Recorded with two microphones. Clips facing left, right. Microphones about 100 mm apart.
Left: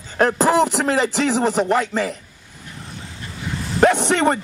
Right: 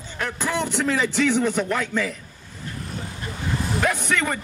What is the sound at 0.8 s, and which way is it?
Speech, 35° left (ahead or behind).